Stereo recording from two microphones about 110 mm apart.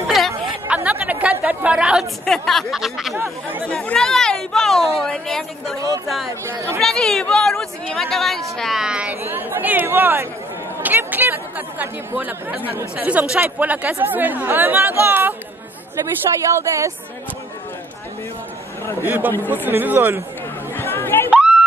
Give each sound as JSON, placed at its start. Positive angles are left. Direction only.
{"t": 0.0, "sound": "chatter", "side_deg": 0}
{"t": 0.7, "sound": "chatter", "side_deg": -10}
{"t": 2.2, "sound": "a woman's voice", "side_deg": 5}
{"t": 3.6, "sound": "a woman's voice", "side_deg": 10}
{"t": 6.4, "sound": "speech", "side_deg": -25}
{"t": 6.8, "sound": "a woman's voice", "side_deg": 5}
{"t": 9.2, "sound": "speech", "side_deg": -20}
{"t": 16.5, "sound": "speech", "side_deg": -25}
{"t": 19.0, "sound": "speech", "side_deg": -15}
{"t": 20.7, "sound": "chatter", "side_deg": 20}
{"t": 21.3, "sound": "a sound", "side_deg": -10}